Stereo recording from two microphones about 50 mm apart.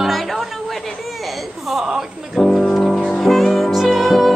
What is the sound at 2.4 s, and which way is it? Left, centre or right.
Music, centre.